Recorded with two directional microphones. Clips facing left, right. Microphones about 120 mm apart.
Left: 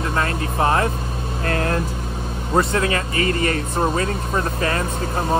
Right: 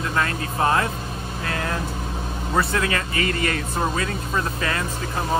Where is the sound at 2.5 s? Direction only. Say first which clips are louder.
Left 4 dB; 30° left (ahead or behind).